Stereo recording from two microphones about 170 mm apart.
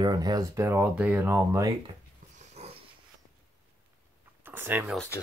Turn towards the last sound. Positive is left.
turn(degrees=-10)  # may be behind; listen again after turning